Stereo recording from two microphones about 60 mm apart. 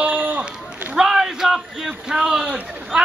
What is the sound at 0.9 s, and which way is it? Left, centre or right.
A man's voice, centre.